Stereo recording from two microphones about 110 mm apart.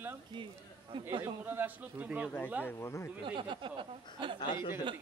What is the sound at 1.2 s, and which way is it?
Speech, 20° right (ahead or behind).